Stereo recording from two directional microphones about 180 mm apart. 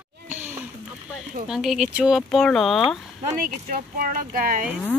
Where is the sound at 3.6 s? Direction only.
55° right (ahead or behind).